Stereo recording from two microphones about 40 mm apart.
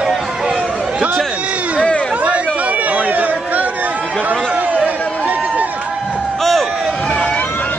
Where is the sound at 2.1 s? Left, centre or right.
Right.